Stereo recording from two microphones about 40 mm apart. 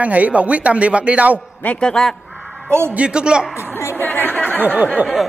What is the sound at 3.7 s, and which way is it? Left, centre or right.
Speech, left.